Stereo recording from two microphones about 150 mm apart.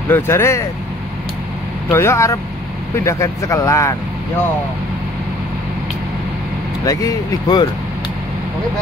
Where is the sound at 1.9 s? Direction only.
15° left (ahead or behind).